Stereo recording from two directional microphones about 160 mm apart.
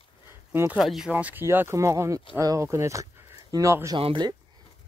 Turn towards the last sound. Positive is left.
turn(degrees=-30)  # may be behind; listen again after turning